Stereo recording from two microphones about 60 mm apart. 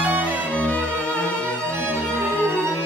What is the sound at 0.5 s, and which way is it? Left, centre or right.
Music, left.